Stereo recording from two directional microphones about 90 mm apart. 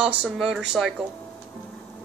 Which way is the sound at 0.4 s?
5° right (ahead or behind).